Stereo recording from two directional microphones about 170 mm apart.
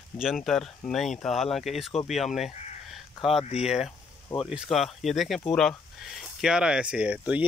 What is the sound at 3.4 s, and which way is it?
Speech, 40° left (ahead or behind).